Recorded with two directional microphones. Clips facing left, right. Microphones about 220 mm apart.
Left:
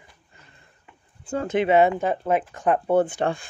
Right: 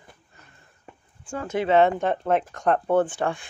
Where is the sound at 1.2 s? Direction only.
40° left (ahead or behind).